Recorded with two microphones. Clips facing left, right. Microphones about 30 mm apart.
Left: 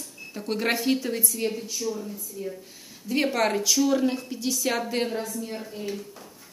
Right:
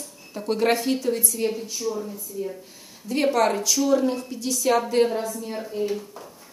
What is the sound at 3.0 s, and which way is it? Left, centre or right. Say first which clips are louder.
A woman's voice: right 3 dB; centre.